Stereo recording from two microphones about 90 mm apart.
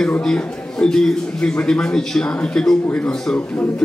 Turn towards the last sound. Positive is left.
turn(degrees=5)  # may be behind; listen again after turning